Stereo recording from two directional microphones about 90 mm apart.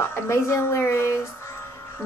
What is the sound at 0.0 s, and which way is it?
Speech, 30° left (ahead or behind).